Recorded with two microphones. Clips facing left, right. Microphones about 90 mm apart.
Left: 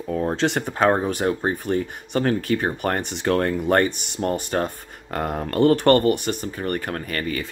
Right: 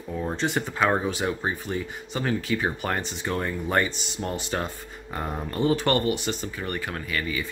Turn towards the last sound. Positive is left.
turn(degrees=50)  # may be behind; listen again after turning